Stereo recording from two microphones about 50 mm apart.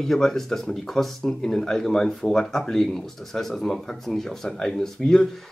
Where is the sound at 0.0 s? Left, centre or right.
Centre.